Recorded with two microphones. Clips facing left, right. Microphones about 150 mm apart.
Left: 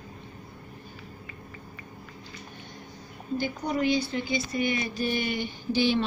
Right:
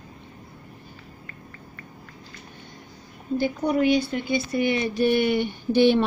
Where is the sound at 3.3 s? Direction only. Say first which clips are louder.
Right 6 dB; 55° right (ahead or behind).